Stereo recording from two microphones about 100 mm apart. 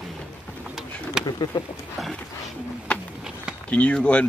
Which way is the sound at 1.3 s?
45° left (ahead or behind).